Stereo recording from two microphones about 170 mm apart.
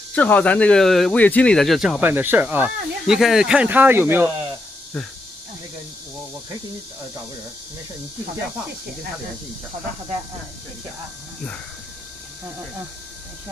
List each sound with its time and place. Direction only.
0.1 s speech: 10° left (ahead or behind); by 4.3 s 10° right (ahead or behind)
4.9 s speech: 5° left (ahead or behind)